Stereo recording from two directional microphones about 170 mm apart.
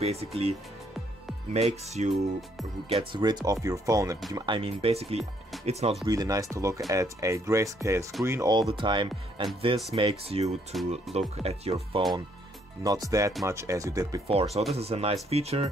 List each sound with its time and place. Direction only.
0.0 s speech: 35° right (ahead or behind)
6.0 s speech: 20° right (ahead or behind); by 12.0 s 35° right (ahead or behind)
12.8 s speech: 20° right (ahead or behind)
14.2 s speech: 35° right (ahead or behind)